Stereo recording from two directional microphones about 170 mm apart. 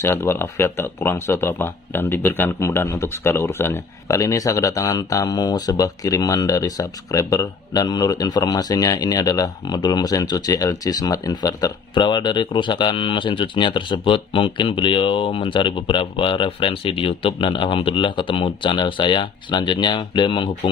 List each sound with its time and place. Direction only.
0.0 s speech: 15° left (ahead or behind)